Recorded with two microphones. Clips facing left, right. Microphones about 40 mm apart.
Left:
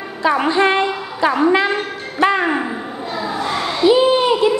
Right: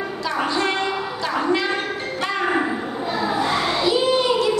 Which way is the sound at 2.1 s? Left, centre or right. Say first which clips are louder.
Left 9 dB; left.